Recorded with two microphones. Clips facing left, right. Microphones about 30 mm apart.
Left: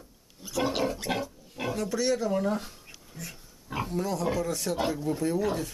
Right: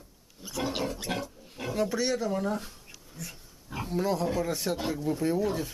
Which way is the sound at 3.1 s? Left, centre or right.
Centre.